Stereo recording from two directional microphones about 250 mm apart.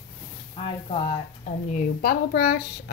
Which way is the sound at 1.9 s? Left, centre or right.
Left.